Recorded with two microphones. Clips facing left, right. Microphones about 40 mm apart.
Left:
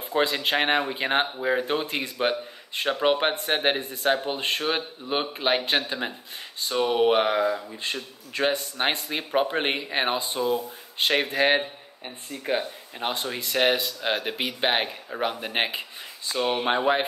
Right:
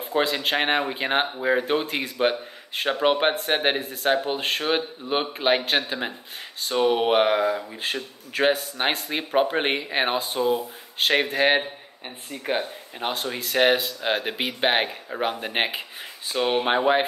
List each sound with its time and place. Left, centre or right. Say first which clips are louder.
0.0 s speech: right 1 dB; centre
8.8 s speech: right 2 dB; centre
13.0 s speech: right 1 dB; centre
16.3 s speech: right 2 dB; centre